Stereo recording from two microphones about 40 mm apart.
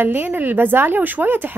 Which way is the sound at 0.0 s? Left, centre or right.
Right.